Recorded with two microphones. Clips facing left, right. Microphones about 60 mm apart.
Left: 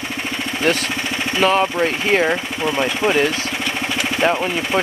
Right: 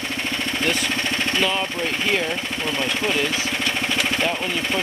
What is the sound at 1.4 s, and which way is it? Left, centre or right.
Speech, left.